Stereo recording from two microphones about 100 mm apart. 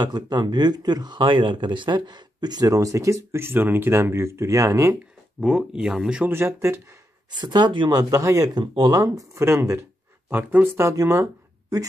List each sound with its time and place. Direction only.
0.0 s speech: 45° right (ahead or behind)
5.4 s speech: 5° right (ahead or behind)
6.3 s speech: 25° right (ahead or behind)
7.2 s speech: 45° right (ahead or behind)
7.9 s speech: 35° right (ahead or behind)
8.5 s speech: 50° right (ahead or behind)
8.9 s speech: 30° right (ahead or behind)